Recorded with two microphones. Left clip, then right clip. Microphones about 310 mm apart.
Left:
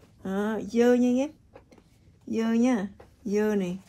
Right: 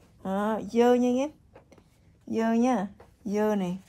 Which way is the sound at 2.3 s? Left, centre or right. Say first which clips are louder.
Right 1 dB; right.